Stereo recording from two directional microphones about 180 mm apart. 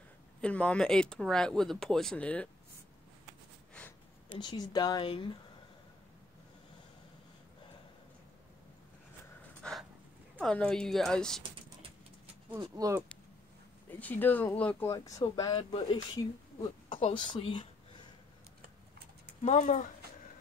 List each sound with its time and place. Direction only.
0.4 s speech: 5° left (ahead or behind)
4.3 s a woman's voice: 25° left (ahead or behind)
9.6 s a sound: 5° left (ahead or behind)
10.4 s speech: 5° left (ahead or behind)
12.5 s speech: 20° right (ahead or behind)
13.8 s speech: 10° left (ahead or behind)
14.9 s a woman's voice: 20° left (ahead or behind)
16.6 s speech: 30° left (ahead or behind)
19.4 s speech: 40° left (ahead or behind)